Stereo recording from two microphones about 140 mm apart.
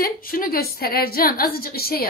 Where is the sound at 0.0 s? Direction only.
90° left.